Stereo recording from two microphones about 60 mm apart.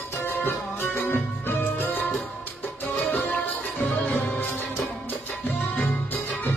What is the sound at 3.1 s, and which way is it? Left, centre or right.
Music, left.